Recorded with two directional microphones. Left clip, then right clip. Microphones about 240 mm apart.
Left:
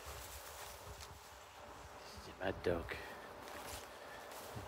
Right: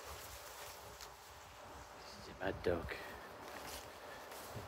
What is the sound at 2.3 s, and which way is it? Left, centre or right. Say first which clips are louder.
Speech: even; centre.